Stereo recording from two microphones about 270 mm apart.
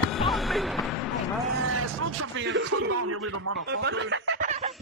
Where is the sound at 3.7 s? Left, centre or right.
Right.